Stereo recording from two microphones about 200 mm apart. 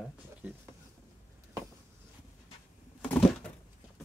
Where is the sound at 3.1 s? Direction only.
5° left (ahead or behind).